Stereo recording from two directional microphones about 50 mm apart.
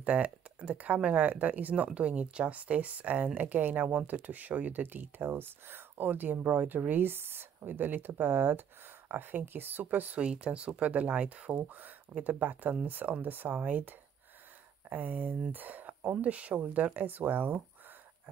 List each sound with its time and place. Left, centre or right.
0.0 s speech: right
10.2 s speech: right